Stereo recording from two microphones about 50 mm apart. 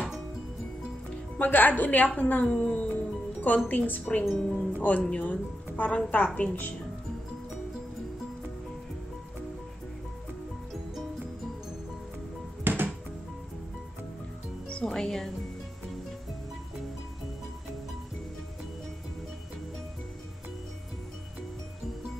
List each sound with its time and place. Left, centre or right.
1.4 s speech: left
2.4 s speech: centre
3.3 s speech: left
4.4 s speech: centre
4.7 s speech: left
12.6 s music: right
14.7 s music: centre